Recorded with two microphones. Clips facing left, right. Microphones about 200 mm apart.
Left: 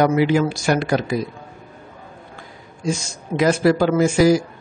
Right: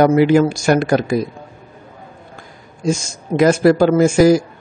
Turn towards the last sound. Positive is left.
turn(degrees=-45)  # may be behind; listen again after turning